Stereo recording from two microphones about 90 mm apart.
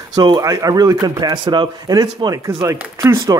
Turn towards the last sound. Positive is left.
turn(degrees=-35)  # may be behind; listen again after turning